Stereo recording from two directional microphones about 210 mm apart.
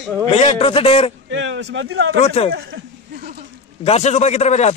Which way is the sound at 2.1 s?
30° left (ahead or behind).